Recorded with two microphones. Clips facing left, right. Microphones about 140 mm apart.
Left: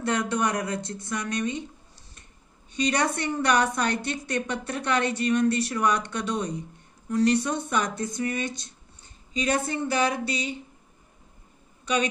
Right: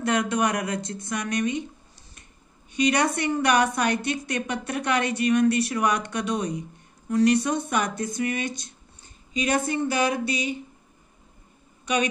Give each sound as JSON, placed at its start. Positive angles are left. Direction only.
{"t": 0.0, "sound": "a woman's voice", "side_deg": -15}
{"t": 2.7, "sound": "a woman's voice", "side_deg": -15}